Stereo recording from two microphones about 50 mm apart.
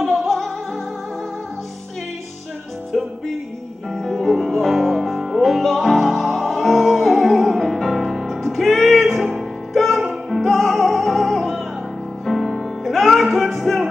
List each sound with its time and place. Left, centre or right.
0.0 s music: centre
3.9 s music: centre